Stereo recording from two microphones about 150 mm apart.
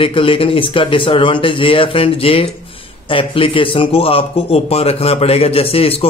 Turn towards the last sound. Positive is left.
turn(degrees=40)  # may be behind; listen again after turning